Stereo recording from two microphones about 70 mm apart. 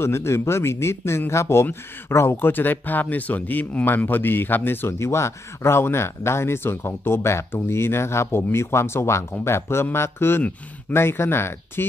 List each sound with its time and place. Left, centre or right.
0.0 s speech: left